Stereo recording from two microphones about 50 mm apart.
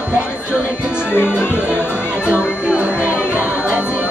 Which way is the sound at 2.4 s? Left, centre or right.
Right.